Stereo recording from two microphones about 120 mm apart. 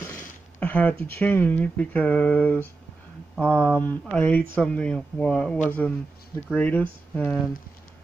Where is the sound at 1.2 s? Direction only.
15° left (ahead or behind).